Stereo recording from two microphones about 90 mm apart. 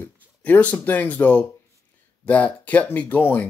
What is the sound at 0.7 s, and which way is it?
Speech, 20° left (ahead or behind).